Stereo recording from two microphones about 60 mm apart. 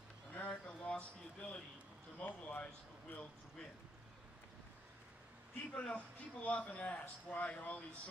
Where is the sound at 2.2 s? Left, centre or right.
Left.